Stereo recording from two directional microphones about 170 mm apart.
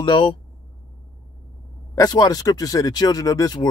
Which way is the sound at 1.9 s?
20° left (ahead or behind).